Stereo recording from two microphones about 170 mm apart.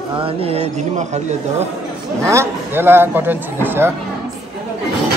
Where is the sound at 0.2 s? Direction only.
35° right (ahead or behind).